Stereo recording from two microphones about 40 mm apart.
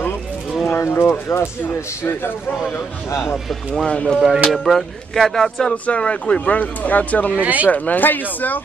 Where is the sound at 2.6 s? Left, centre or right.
Left.